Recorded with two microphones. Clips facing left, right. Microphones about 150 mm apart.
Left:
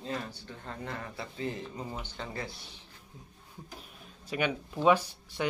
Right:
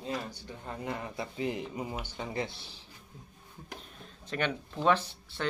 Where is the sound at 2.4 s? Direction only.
30° right (ahead or behind).